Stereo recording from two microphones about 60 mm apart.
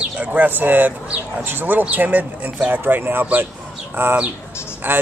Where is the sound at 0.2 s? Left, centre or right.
Right.